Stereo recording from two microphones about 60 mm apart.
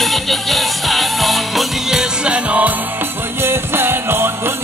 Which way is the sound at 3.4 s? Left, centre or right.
Right.